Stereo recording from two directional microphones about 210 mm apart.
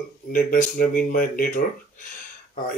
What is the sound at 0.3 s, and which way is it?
Speech, 40° left (ahead or behind).